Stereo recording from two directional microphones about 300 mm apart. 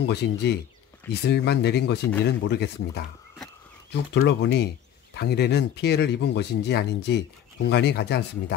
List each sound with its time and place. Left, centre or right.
0.0 s speech: left